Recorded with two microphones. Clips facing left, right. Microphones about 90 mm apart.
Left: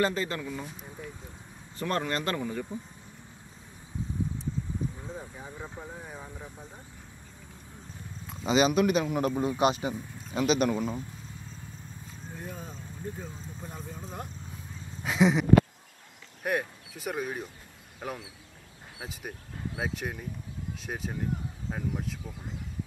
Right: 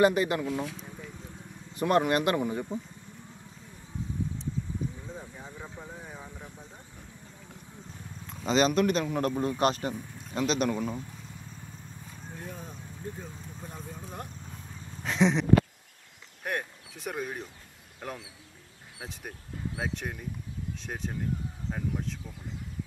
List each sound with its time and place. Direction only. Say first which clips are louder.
0.0 s speech: right 5 dB; 15° right (ahead or behind)
0.5 s speech: right 5 dB; 75° right (ahead or behind)
1.8 s speech: right 6 dB; 15° right (ahead or behind)
5.1 s speech: left 2 dB; 5° left (ahead or behind)
8.3 s a man's voice: left 1 dB; 5° left (ahead or behind)
12.4 s vehicle: left 1 dB; centre (ahead or behind)
15.0 s speech: left 1 dB; 5° left (ahead or behind)
16.4 s a man's voice: left 4 dB; 5° left (ahead or behind)